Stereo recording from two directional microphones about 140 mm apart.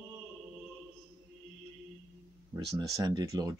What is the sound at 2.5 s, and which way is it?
Speech, 25° right (ahead or behind).